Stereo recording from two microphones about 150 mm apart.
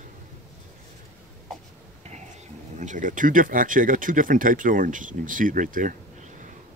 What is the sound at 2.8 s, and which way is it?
Speech, 55° right (ahead or behind).